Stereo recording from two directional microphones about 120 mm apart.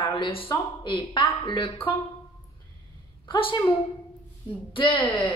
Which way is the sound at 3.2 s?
45° left (ahead or behind).